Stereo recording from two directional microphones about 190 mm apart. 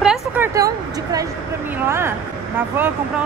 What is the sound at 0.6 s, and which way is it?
Speech, 20° right (ahead or behind).